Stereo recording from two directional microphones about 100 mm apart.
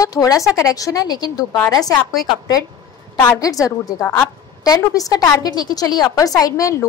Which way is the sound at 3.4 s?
35° left (ahead or behind).